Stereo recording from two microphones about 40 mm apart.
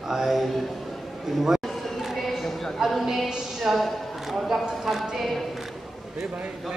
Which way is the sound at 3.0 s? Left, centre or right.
Centre.